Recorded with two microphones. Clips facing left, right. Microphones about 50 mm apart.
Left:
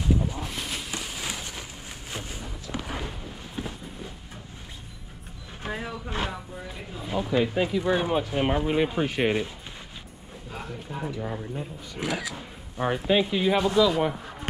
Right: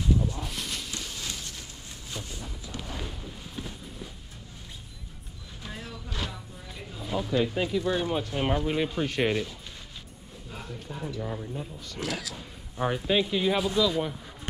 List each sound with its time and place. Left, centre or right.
0.4 s a sound: centre
5.6 s vehicle: left
6.7 s a sound: centre
7.8 s speech: left
8.1 s speech: centre
10.7 s speech: centre